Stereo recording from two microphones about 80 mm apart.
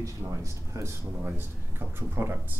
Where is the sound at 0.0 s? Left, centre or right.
Right.